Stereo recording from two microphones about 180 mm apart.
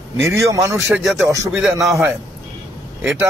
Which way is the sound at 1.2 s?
15° right (ahead or behind).